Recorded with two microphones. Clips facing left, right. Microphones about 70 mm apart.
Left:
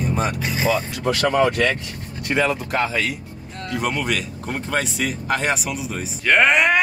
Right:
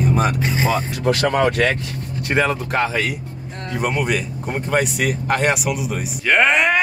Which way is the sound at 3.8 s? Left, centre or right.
Centre.